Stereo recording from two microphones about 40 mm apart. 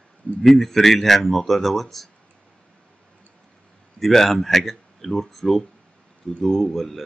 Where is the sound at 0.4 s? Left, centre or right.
Centre.